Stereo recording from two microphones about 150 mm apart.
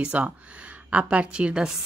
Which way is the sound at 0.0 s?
10° right (ahead or behind).